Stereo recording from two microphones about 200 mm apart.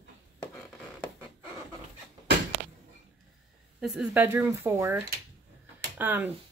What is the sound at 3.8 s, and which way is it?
Speech, centre (ahead or behind).